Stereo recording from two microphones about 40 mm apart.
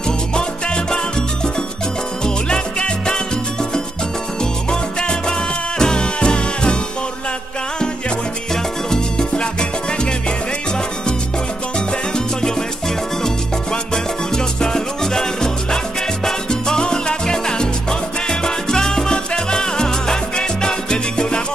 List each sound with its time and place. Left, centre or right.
2.2 s salsa music: left
5.8 s music: centre
8.9 s salsa music: centre
12.4 s music: centre
13.9 s music: centre
16.3 s salsa music: centre